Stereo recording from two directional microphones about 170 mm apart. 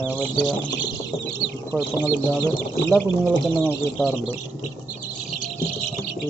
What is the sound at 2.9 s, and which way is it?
Speech, 5° right (ahead or behind).